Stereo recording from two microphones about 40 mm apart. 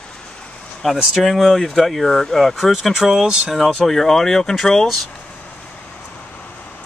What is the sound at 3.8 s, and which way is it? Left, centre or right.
Speech, centre.